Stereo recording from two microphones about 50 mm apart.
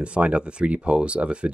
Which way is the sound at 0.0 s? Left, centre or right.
Right.